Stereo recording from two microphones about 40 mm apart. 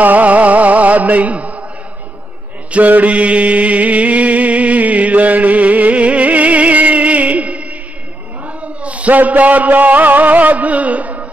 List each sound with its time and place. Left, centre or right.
0.0 s music: right
2.7 s mantra: right
8.5 s a man's voice: right